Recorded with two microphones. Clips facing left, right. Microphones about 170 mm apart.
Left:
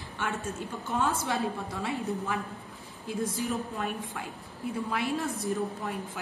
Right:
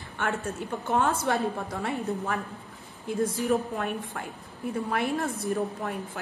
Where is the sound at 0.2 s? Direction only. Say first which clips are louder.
Right 4 dB; 55° right (ahead or behind).